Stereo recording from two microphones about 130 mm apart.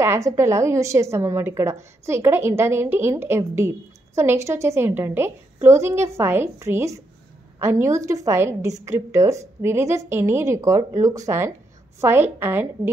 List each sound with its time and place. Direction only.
0.0 s a woman's voice: 20° right (ahead or behind)